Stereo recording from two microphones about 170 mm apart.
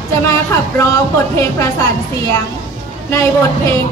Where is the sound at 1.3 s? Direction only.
20° left (ahead or behind).